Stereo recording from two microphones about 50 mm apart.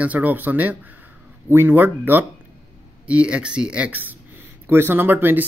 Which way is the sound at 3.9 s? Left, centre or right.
Right.